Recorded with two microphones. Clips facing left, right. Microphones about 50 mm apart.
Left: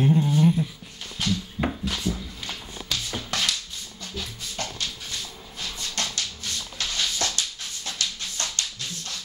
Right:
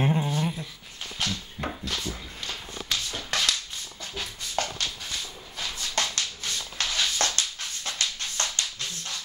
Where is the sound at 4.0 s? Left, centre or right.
Right.